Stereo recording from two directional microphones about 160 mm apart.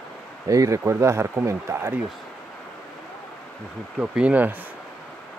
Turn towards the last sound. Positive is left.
turn(degrees=-10)  # may be behind; listen again after turning